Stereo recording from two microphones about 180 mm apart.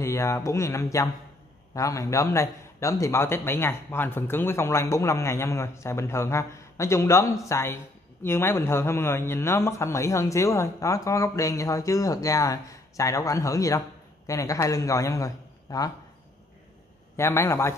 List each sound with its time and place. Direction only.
0.0 s a man's voice: 15° left (ahead or behind)
17.2 s a man's voice: 15° left (ahead or behind)